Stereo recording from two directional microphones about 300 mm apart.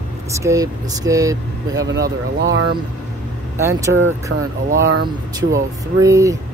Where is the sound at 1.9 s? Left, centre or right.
Right.